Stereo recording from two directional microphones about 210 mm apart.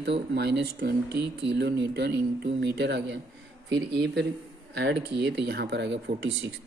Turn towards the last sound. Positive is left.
turn(degrees=-55)  # may be behind; listen again after turning